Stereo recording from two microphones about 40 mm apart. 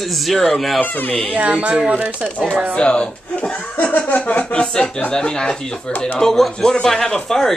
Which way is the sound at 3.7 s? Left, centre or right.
Left.